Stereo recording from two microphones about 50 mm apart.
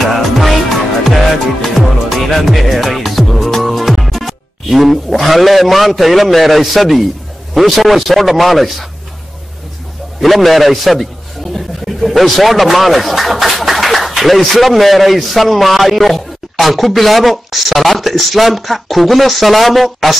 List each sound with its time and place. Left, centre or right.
0.0 s music: centre
7.5 s speech: centre
10.2 s speech: centre